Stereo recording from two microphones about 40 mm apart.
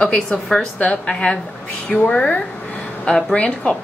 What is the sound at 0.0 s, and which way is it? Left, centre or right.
A woman's voice, left.